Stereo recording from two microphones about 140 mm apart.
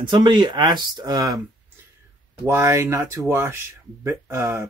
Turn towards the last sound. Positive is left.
turn(degrees=-20)  # may be behind; listen again after turning